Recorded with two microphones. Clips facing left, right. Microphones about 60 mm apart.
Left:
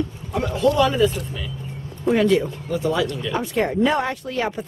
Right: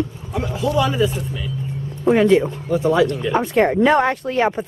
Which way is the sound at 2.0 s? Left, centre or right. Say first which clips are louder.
Right 4 dB; right.